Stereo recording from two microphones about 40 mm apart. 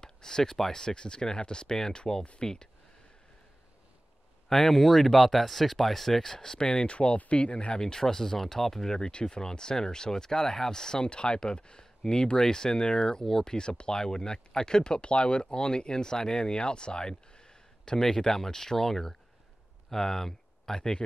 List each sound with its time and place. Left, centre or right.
0.0 s speech: centre
4.5 s speech: centre